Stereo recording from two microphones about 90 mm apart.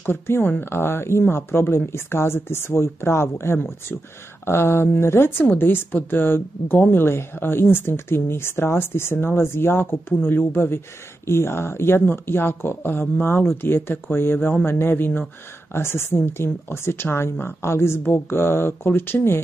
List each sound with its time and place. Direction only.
0.0 s a woman's voice: 25° left (ahead or behind)